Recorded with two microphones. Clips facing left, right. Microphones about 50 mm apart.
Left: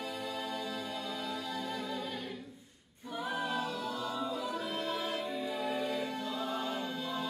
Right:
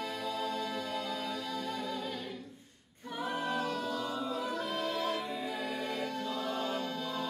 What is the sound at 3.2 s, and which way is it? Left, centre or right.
A capella, centre.